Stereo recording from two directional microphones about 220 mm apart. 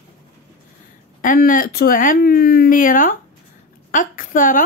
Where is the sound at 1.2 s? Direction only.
40° left (ahead or behind).